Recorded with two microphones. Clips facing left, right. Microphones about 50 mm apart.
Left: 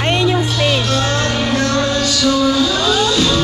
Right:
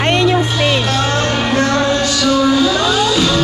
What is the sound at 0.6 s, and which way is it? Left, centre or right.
Music, centre.